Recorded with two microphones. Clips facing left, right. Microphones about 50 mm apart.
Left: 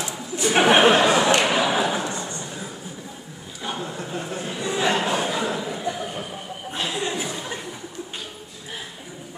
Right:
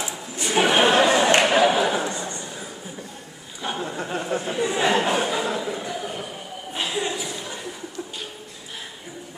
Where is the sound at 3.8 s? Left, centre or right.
Right.